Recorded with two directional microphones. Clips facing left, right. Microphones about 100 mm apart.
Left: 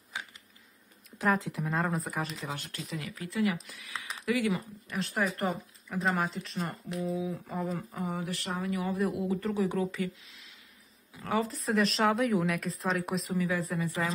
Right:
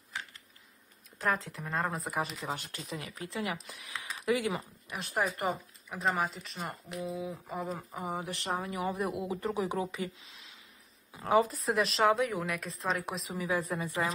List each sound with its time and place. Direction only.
0.1 s a sound: 15° left (ahead or behind)
1.4 s speech: 15° left (ahead or behind)
1.7 s speech: centre (ahead or behind)
3.0 s speech: 20° right (ahead or behind)
5.5 s speech: centre (ahead or behind)
7.9 s speech: 15° right (ahead or behind)
11.1 s speech: 15° right (ahead or behind)
11.7 s speech: centre (ahead or behind)
13.4 s speech: 15° right (ahead or behind)